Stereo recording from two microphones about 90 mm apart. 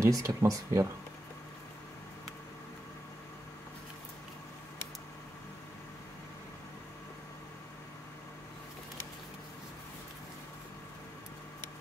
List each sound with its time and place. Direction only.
0.0 s speech: 40° right (ahead or behind)